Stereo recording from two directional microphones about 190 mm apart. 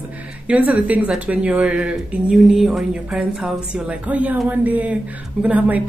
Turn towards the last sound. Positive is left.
turn(degrees=-10)  # may be behind; listen again after turning